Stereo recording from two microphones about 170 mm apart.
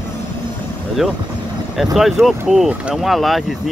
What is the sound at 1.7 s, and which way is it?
Speech, centre (ahead or behind).